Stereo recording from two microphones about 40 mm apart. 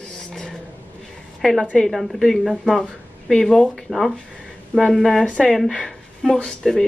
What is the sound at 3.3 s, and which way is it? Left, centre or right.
Speech, centre.